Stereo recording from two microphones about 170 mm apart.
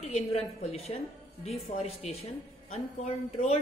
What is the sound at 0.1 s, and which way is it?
A woman's voice, 40° left (ahead or behind).